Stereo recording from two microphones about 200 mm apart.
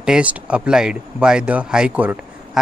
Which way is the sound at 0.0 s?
5° right (ahead or behind).